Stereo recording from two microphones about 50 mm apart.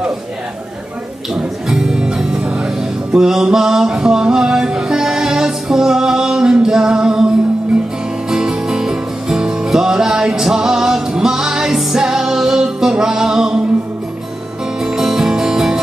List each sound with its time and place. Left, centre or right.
1.3 s music: centre
8.3 s music: centre
14.8 s music: centre